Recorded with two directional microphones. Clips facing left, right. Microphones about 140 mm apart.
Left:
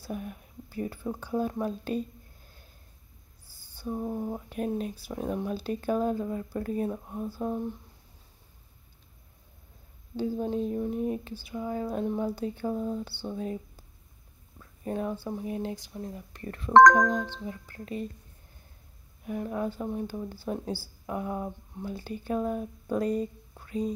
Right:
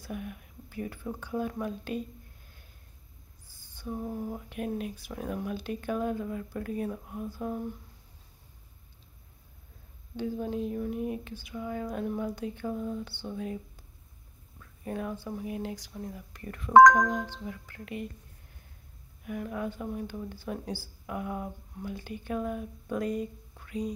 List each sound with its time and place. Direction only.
0.0 s speech: 35° left (ahead or behind)
3.4 s speech: 35° left (ahead or behind)
10.1 s speech: 30° left (ahead or behind)
14.6 s speech: 30° left (ahead or behind)
19.2 s speech: 30° left (ahead or behind)